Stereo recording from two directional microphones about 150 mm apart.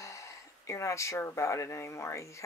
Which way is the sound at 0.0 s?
20° left (ahead or behind).